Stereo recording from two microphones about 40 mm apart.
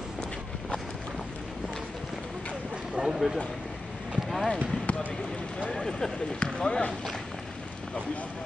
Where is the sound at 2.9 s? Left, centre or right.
Centre.